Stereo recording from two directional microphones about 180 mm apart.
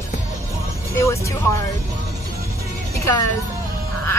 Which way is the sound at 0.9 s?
15° left (ahead or behind).